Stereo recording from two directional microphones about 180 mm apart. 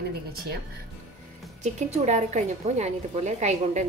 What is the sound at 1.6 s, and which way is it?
A woman's voice, 40° right (ahead or behind).